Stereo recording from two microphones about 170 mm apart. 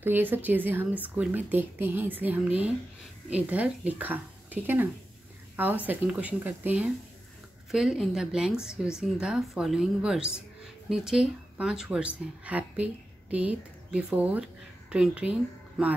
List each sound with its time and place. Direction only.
0.0 s a woman's voice: 10° right (ahead or behind)
5.9 s a woman's voice: 10° right (ahead or behind)